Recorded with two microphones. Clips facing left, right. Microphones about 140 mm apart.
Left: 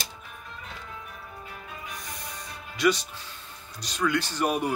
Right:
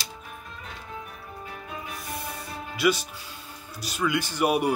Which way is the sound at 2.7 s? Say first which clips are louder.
Even; 10° right (ahead or behind).